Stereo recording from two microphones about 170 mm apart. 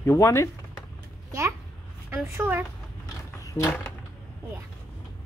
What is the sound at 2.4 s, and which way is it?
Speech, 10° right (ahead or behind).